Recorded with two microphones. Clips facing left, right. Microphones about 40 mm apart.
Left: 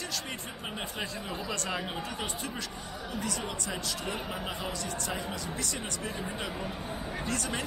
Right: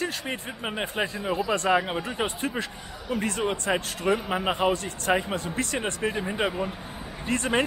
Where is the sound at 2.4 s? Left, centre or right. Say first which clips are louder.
Right 7 dB; right.